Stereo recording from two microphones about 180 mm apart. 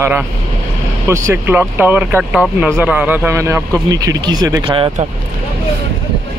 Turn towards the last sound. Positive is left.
turn(degrees=-20)  # may be behind; listen again after turning